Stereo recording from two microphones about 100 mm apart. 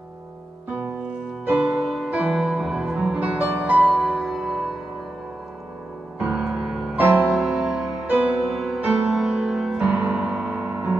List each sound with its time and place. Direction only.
0.7 s music: 15° right (ahead or behind)
1.8 s music: centre (ahead or behind); by 3.7 s 15° right (ahead or behind)
3.8 s music: centre (ahead or behind)
6.1 s music: 10° right (ahead or behind)
7.0 s music: 20° right (ahead or behind)
7.2 s music: 5° right (ahead or behind)
8.5 s music: centre (ahead or behind)